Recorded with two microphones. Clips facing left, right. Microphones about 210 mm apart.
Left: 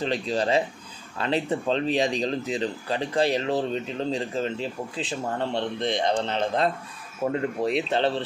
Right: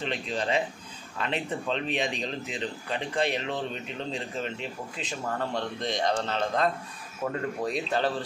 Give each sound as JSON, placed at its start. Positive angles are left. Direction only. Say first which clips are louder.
{"t": 0.0, "sound": "speech", "louder": "left 5 dB", "side_deg": 35}